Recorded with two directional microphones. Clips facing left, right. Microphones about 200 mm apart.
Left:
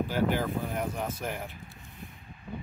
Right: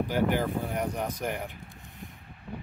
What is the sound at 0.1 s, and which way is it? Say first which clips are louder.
Speech: right 1 dB; 15° right (ahead or behind).